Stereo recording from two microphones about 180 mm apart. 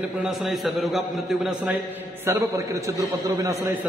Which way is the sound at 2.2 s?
15° right (ahead or behind).